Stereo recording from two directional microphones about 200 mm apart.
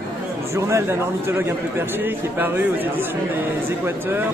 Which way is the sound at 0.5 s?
15° right (ahead or behind).